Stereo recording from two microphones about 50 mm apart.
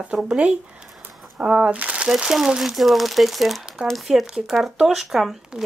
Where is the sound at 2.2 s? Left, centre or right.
Centre.